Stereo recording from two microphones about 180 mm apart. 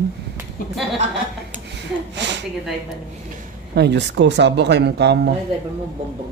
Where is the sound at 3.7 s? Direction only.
70° right (ahead or behind).